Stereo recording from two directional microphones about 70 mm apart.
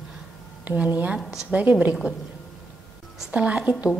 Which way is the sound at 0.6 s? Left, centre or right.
Right.